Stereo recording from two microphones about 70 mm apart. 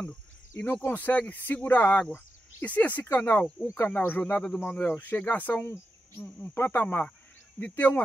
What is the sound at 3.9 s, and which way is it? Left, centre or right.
Speech, left.